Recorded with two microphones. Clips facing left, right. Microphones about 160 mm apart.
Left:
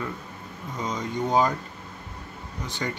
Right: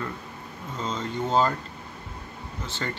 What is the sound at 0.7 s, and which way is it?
Speech, 15° left (ahead or behind).